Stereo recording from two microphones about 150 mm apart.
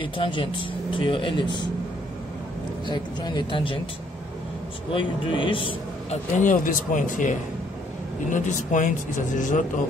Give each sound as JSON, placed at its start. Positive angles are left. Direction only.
{"t": 0.0, "sound": "speech", "side_deg": 35}
{"t": 2.9, "sound": "speech", "side_deg": 30}
{"t": 4.9, "sound": "a man's voice", "side_deg": 35}
{"t": 6.3, "sound": "speech", "side_deg": 60}